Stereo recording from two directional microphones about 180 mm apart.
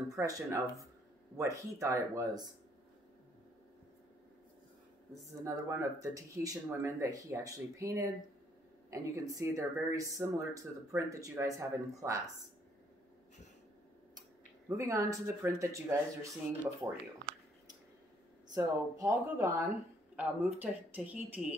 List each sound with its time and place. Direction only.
0.1 s speech: 20° right (ahead or behind)
5.4 s speech: 15° right (ahead or behind)
14.7 s speech: 15° right (ahead or behind)
18.5 s speech: 20° right (ahead or behind)